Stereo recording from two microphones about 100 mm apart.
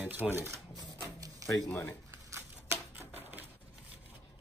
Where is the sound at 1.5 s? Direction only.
20° left (ahead or behind).